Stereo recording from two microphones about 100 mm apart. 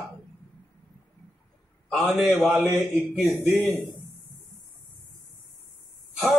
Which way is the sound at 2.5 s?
30° right (ahead or behind).